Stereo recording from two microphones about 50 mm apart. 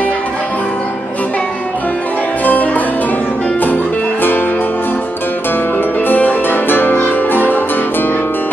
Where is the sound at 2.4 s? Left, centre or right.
Left.